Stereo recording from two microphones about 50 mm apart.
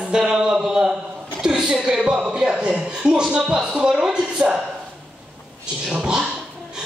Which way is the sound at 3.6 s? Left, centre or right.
Centre.